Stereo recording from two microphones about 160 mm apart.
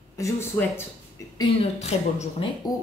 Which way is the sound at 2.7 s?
20° left (ahead or behind).